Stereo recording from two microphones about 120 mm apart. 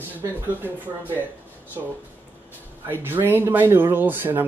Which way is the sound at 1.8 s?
30° right (ahead or behind).